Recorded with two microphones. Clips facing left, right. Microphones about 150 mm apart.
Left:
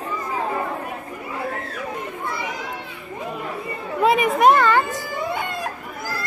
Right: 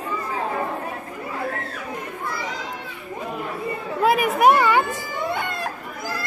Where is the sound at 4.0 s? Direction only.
Centre (ahead or behind).